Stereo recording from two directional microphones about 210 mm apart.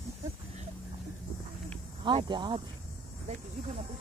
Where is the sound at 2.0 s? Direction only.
20° right (ahead or behind).